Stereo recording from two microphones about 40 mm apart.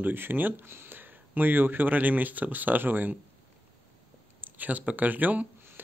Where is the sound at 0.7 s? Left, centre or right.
Right.